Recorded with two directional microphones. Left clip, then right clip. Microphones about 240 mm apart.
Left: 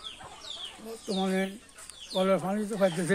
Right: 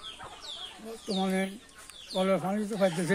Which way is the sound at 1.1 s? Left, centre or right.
Centre.